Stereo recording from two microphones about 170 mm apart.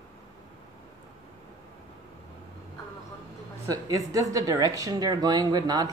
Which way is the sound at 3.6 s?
20° right (ahead or behind).